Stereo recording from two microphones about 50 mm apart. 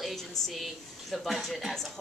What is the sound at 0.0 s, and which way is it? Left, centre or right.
A woman's voice, centre.